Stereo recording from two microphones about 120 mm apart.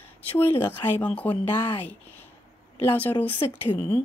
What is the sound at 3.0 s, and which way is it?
Speech, 15° left (ahead or behind).